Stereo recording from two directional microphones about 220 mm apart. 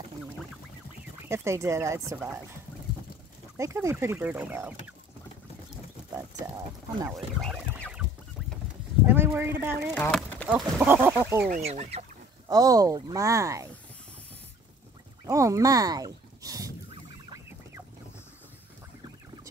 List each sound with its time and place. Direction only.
1.3 s speech: 10° right (ahead or behind)
3.5 s speech: 15° right (ahead or behind)
7.4 s goose: centre (ahead or behind)
9.0 s speech: 10° right (ahead or behind)
9.9 s speech: 5° left (ahead or behind)
10.5 s speech: 5° right (ahead or behind)
11.5 s speech: 30° right (ahead or behind)
12.4 s speech: 15° right (ahead or behind)
15.2 s speech: 15° right (ahead or behind)